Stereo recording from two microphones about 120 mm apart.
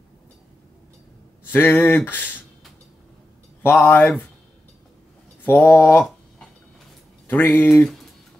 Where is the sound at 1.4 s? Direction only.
20° left (ahead or behind).